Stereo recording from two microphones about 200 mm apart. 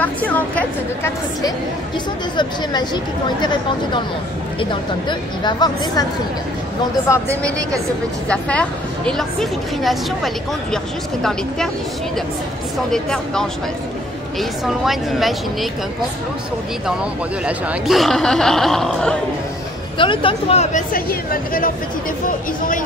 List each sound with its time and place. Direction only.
0.0 s a woman's voice: 5° left (ahead or behind)
2.3 s speech: 20° left (ahead or behind)
5.4 s speech: 20° left (ahead or behind)
8.3 s a woman's voice: 5° left (ahead or behind)
12.7 s a woman's voice: 5° left (ahead or behind)
16.8 s a woman's voice: 5° right (ahead or behind)
20.0 s speech: 25° left (ahead or behind)
20.9 s a woman's voice: 45° left (ahead or behind)